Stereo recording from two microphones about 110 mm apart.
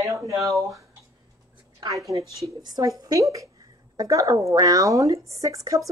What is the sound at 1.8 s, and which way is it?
A woman's voice, 30° right (ahead or behind).